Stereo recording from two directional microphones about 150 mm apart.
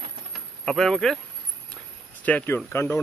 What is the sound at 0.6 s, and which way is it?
Speech, 5° left (ahead or behind).